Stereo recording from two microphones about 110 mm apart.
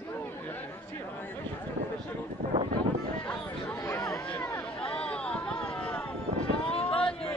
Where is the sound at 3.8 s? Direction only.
25° left (ahead or behind).